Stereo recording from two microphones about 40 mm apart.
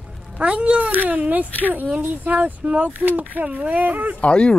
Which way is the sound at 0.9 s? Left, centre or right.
Right.